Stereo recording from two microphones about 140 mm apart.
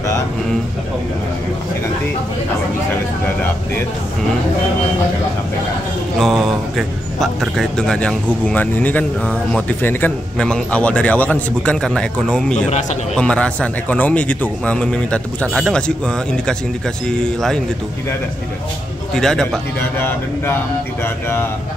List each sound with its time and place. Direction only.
6.1 s a man's voice: centre (ahead or behind)
19.1 s a man's voice: 5° left (ahead or behind)
20.0 s a man's voice: 15° left (ahead or behind)